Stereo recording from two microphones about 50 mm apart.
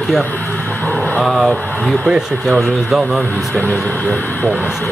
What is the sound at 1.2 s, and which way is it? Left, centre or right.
Speech, centre.